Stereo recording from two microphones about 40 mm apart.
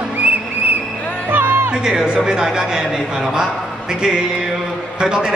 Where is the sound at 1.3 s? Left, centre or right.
Right.